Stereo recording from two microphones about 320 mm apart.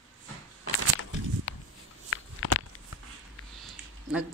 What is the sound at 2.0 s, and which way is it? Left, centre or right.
Walk, left.